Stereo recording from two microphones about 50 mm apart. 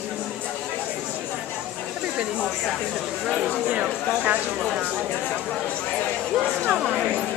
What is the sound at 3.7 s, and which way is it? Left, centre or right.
Speech, right.